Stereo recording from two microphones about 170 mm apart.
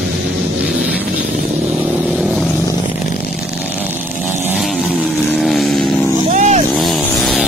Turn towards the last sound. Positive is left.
turn(degrees=-40)  # may be behind; listen again after turning